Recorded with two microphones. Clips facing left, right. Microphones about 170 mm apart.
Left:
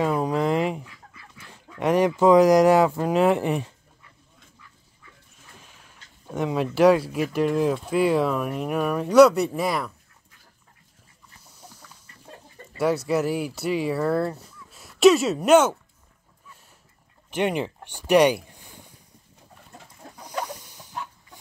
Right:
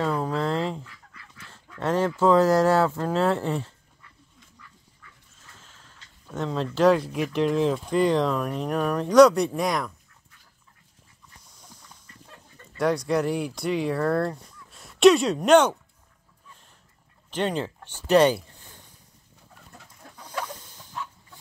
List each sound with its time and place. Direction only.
0.0 s dog: 15° left (ahead or behind)
5.3 s a sound: 15° left (ahead or behind)
6.3 s speech: 10° left (ahead or behind)
12.7 s speech: 5° left (ahead or behind)
17.3 s a sound: 15° left (ahead or behind)
20.0 s chicken: 20° left (ahead or behind)